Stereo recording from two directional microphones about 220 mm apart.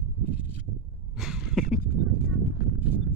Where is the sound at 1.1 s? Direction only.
Centre (ahead or behind).